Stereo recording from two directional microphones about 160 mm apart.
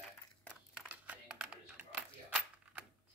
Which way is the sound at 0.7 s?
5° right (ahead or behind).